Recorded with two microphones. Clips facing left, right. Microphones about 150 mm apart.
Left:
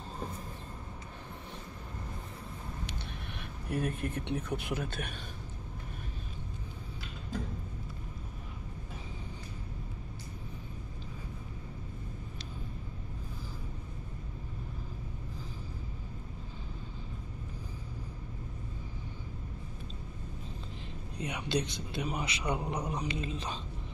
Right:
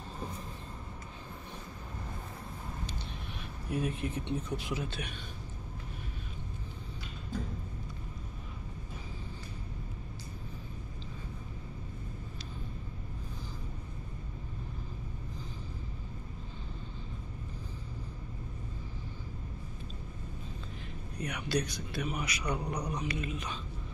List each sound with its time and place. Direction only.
3.6 s speech: 55° left (ahead or behind)
21.2 s a man's voice: 25° left (ahead or behind)